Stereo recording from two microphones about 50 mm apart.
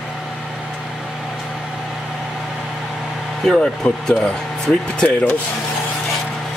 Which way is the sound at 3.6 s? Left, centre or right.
Centre.